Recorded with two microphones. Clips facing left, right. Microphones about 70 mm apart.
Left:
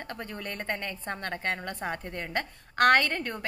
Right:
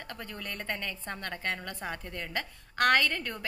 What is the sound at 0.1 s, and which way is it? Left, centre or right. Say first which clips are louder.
A woman's voice: left 2 dB; left.